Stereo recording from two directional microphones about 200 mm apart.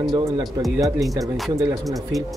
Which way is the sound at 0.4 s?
Centre (ahead or behind).